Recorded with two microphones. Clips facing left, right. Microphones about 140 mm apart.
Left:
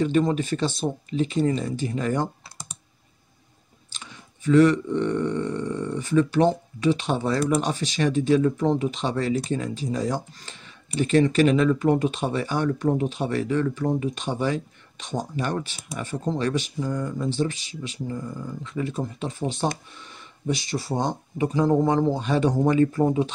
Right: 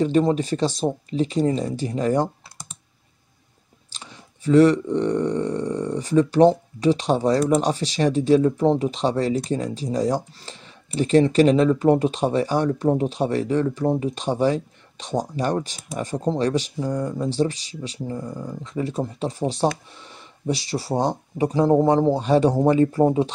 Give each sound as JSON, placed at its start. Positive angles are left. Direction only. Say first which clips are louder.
{"t": 0.0, "sound": "speech", "louder": "right 3 dB", "side_deg": -30}
{"t": 3.9, "sound": "speech", "louder": "right 1 dB", "side_deg": -35}